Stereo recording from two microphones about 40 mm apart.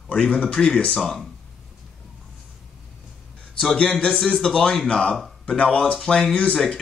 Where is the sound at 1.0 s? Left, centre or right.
Centre.